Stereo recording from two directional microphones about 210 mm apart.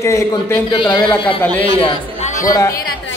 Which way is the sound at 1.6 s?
30° left (ahead or behind).